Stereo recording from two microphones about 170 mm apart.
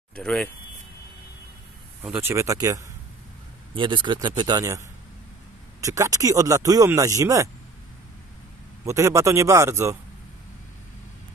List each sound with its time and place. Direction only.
0.1 s speech: 5° left (ahead or behind)
2.0 s speech: 10° right (ahead or behind)
8.8 s speech: 15° right (ahead or behind)